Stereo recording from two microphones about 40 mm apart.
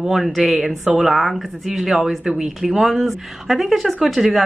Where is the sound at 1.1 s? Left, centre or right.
Centre.